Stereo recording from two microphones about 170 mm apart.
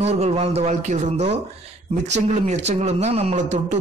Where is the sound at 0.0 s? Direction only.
40° right (ahead or behind).